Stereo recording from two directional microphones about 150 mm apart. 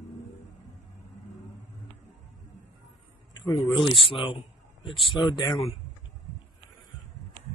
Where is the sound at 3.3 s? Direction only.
25° left (ahead or behind).